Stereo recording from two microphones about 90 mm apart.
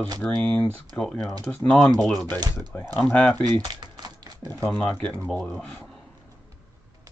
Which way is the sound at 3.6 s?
55° right (ahead or behind).